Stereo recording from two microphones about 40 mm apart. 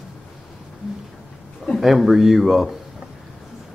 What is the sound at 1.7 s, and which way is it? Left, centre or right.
A woman's voice, centre.